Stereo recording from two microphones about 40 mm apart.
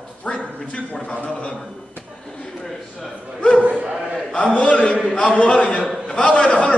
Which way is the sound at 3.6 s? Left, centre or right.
Right.